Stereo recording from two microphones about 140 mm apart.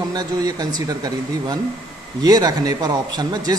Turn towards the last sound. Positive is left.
turn(degrees=-25)  # may be behind; listen again after turning